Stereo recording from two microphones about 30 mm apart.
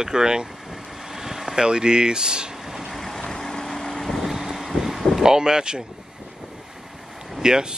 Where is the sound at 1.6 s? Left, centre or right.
Right.